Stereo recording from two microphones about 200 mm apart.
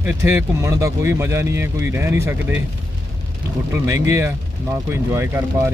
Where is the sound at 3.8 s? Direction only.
15° right (ahead or behind).